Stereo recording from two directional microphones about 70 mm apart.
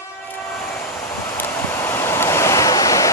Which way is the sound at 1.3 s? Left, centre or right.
Left.